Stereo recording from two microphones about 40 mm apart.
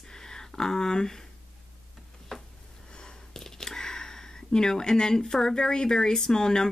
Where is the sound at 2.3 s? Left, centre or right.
Centre.